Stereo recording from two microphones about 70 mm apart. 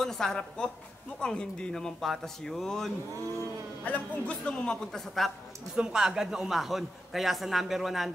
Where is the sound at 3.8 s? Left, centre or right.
Left; by 5.3 s centre.